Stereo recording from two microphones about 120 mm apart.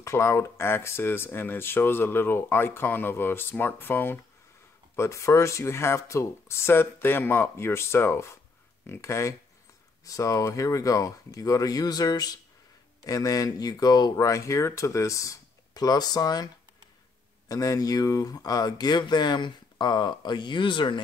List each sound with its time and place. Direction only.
0.0 s speech: 25° left (ahead or behind)
17.5 s speech: 30° left (ahead or behind)